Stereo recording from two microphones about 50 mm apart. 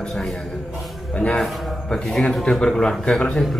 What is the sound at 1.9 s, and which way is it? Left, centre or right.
Speech, centre.